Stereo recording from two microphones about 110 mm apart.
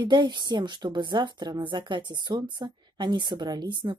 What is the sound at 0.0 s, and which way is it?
A woman's voice, 45° right (ahead or behind).